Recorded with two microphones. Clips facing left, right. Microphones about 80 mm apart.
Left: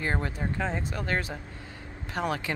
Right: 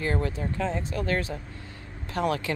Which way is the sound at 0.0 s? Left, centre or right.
Left.